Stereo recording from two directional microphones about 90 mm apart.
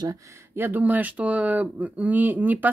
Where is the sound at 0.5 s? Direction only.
20° right (ahead or behind).